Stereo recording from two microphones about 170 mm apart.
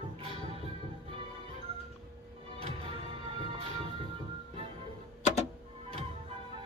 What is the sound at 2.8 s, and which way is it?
Music, 35° right (ahead or behind).